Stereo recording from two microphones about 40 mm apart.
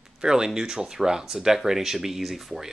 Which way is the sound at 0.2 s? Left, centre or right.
Centre.